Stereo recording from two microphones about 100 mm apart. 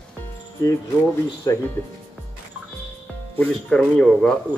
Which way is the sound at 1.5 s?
30° left (ahead or behind).